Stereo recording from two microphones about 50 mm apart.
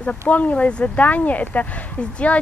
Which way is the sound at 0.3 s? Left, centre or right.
Left.